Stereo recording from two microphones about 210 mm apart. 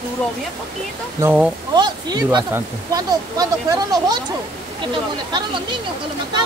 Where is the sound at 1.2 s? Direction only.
10° right (ahead or behind).